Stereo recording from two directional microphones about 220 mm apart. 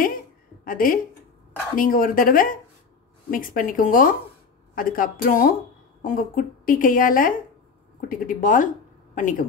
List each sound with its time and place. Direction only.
0.7 s a woman's voice: 40° left (ahead or behind)